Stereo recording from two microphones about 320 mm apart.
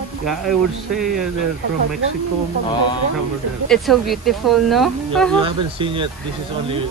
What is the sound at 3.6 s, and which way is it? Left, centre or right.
Speech, centre.